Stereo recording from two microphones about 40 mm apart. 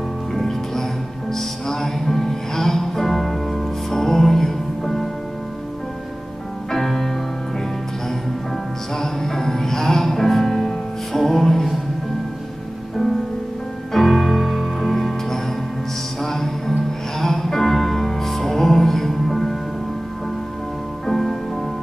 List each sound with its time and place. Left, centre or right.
0.3 s music: centre
6.7 s music: centre
8.9 s music: centre
12.9 s music: centre
16.2 s music: centre
21.1 s music: centre